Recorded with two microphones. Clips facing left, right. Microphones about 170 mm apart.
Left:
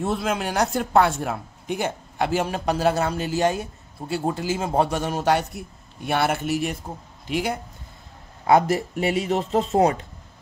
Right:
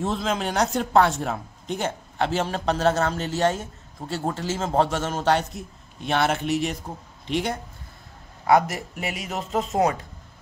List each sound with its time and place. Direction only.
0.0 s speech: 10° left (ahead or behind)
8.5 s speech: 25° left (ahead or behind)